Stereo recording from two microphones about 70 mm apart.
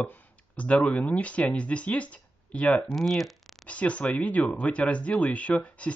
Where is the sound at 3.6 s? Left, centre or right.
Centre.